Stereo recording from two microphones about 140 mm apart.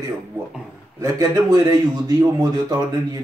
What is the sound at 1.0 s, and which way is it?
Speech, 25° right (ahead or behind).